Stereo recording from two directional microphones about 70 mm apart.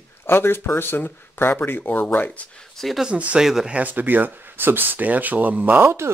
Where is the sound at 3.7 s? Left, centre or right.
Right.